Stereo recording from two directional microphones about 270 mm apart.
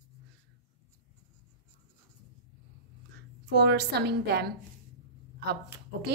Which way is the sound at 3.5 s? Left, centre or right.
Right.